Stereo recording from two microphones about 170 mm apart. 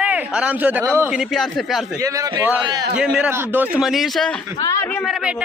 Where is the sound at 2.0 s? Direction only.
20° right (ahead or behind).